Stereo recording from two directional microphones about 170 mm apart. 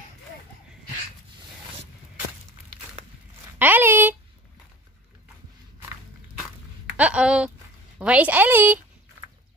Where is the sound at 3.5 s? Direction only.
10° right (ahead or behind).